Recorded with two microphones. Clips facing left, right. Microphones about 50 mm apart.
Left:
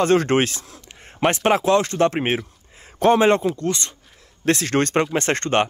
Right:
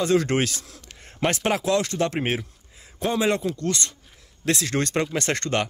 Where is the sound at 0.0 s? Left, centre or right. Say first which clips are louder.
Left 4 dB; left.